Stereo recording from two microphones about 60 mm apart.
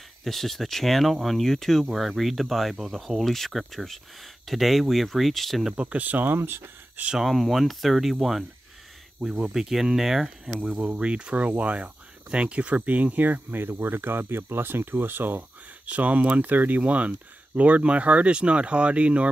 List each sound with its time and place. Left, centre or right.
0.2 s speech: centre
5.7 s speech: centre; by 6.7 s right
7.2 s speech: centre
10.6 s speech: centre